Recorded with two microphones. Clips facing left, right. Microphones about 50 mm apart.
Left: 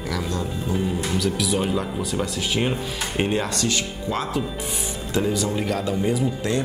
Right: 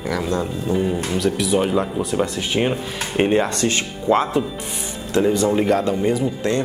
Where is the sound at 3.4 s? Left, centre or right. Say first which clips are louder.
Right 3 dB; right.